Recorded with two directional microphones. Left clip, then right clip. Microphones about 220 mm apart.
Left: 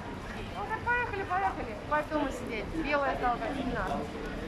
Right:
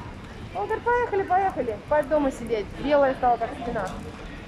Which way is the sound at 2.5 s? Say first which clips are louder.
Right 8 dB; 35° right (ahead or behind).